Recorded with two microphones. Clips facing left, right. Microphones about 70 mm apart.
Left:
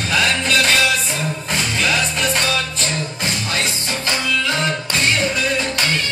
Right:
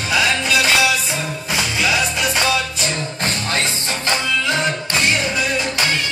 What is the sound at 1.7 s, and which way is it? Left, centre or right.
Music, centre.